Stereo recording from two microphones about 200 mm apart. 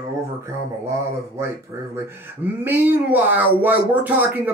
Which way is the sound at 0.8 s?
15° right (ahead or behind).